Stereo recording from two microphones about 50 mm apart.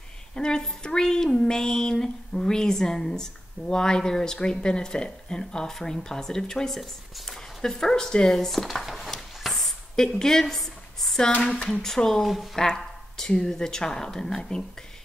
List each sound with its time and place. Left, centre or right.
0.3 s speech: centre
9.1 s a sound: centre
11.3 s speech: left
11.8 s speech: centre